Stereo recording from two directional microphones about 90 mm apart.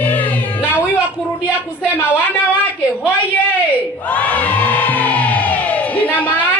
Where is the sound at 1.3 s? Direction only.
15° right (ahead or behind).